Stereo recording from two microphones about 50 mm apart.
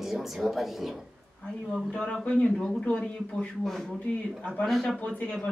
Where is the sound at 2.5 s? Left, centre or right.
Centre.